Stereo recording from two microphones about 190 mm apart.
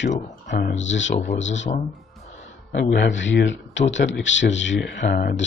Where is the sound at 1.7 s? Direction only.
35° left (ahead or behind).